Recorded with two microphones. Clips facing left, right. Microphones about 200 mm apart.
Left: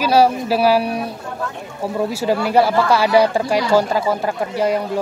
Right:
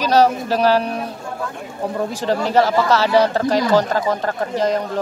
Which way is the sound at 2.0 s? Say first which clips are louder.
Left 3 dB; 10° left (ahead or behind).